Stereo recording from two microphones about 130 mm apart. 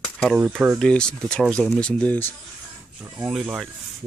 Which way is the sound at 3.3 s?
5° right (ahead or behind).